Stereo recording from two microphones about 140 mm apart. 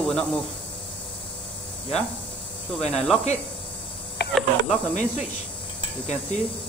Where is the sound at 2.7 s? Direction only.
50° left (ahead or behind).